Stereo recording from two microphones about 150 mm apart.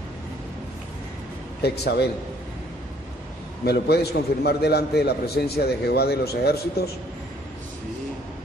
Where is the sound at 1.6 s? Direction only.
90° left.